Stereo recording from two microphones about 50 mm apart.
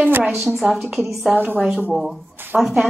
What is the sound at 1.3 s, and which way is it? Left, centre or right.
Speech, right.